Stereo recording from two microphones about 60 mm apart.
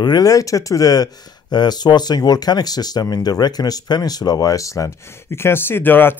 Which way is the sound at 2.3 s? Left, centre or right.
Left.